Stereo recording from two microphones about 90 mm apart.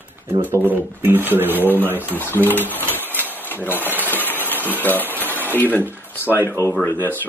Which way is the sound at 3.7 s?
20° right (ahead or behind).